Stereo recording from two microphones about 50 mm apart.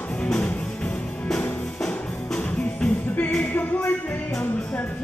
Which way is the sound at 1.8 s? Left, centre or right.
Centre.